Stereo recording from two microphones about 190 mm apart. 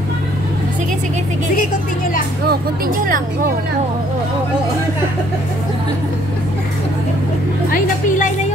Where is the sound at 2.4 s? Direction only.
50° right (ahead or behind).